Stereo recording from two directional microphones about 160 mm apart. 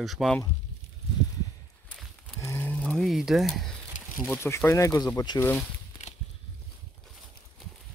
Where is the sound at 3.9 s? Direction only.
50° left (ahead or behind).